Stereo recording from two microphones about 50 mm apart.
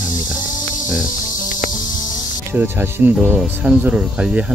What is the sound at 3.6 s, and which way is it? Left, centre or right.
Speech, right.